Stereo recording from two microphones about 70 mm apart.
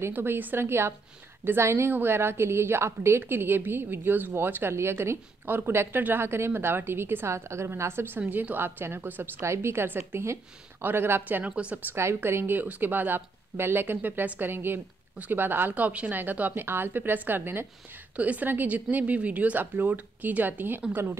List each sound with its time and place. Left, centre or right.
0.1 s a woman's voice: right
11.9 s a woman's voice: right